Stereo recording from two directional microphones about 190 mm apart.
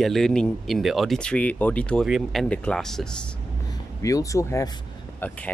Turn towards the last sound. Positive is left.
turn(degrees=5)  # may be behind; listen again after turning